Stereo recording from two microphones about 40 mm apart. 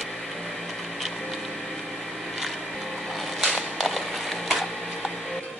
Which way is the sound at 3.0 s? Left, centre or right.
Centre.